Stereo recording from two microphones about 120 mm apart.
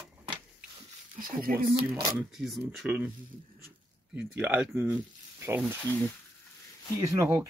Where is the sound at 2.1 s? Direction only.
Centre (ahead or behind).